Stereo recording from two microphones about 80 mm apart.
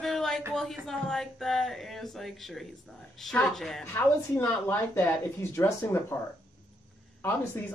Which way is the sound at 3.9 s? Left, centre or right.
Left.